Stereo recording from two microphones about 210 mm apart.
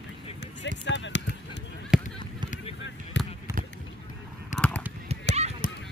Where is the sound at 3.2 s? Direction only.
60° left (ahead or behind).